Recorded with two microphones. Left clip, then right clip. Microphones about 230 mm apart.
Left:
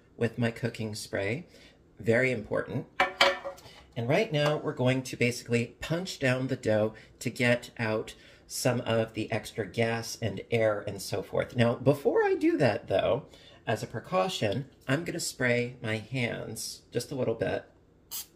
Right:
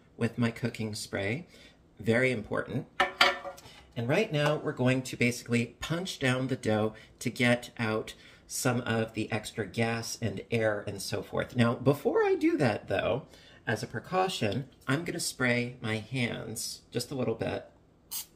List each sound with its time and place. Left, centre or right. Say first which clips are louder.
0.2 s speech: left 2 dB; centre
3.9 s speech: left 1 dB; centre